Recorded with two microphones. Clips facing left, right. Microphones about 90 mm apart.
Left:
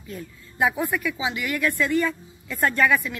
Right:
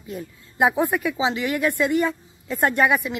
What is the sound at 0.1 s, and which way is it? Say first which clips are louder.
Speech: right 3 dB; 25° right (ahead or behind).